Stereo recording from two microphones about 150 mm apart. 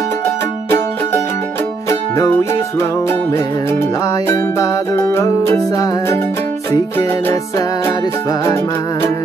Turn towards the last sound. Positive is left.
turn(degrees=15)  # may be behind; listen again after turning